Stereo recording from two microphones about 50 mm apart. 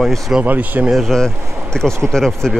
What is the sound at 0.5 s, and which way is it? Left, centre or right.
Speech, right.